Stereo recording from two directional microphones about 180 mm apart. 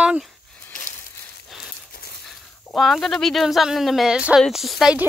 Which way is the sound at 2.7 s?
Centre (ahead or behind).